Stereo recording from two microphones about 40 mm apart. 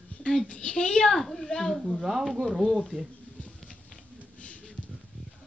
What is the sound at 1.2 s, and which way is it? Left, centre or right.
Speech, centre.